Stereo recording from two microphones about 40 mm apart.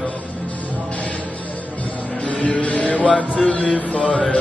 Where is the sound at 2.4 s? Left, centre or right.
Left.